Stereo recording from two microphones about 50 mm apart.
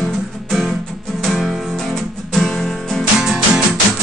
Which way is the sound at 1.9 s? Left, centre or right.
Centre.